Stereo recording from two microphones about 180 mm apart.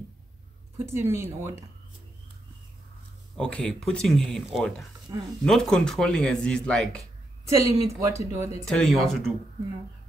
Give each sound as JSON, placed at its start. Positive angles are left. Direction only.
{"t": 0.8, "sound": "a woman's voice", "side_deg": -15}
{"t": 3.3, "sound": "speech", "side_deg": 5}
{"t": 7.4, "sound": "a woman's voice", "side_deg": -15}
{"t": 8.6, "sound": "speech", "side_deg": 5}